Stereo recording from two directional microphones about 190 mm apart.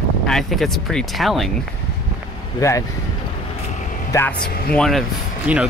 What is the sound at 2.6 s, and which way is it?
Speech, 15° left (ahead or behind).